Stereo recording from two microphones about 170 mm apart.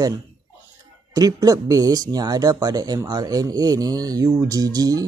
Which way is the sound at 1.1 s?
20° right (ahead or behind).